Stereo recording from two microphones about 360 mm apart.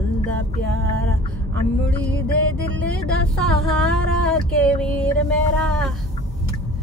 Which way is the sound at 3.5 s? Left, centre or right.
Centre.